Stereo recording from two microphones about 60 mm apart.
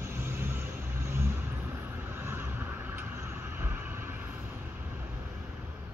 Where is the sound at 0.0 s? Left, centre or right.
Right.